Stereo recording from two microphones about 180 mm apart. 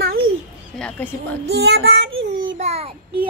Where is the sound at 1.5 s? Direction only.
75° right (ahead or behind); by 2.5 s 90° right.